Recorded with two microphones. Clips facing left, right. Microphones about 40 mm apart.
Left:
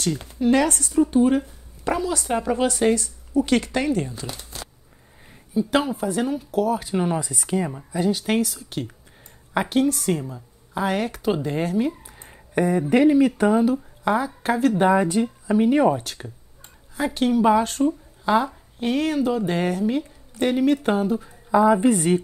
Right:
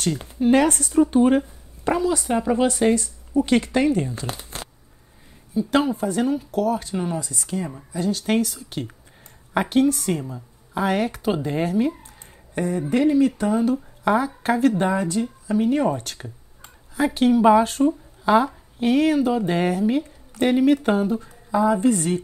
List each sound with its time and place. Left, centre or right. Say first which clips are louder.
0.3 s speech: right 2 dB; right
2.3 s speech: left 1 dB; centre
2.9 s speech: right 1 dB; right
3.4 s speech: right 5 dB; right
4.1 s speech: right 3 dB; right
5.7 s speech: right 3 dB; centre
7.0 s speech: left 3 dB; left
8.3 s speech: right 1 dB; centre
12.1 s a sound: left 2 dB; left
12.9 s speech: left 1 dB; centre
14.0 s a woman's voice: right 2 dB; centre
14.8 s speech: left 4 dB; centre
15.9 s speech: left 2 dB; centre
21.5 s speech: left 2 dB; centre